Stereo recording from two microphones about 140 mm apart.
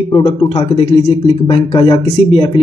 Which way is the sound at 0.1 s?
45° left (ahead or behind).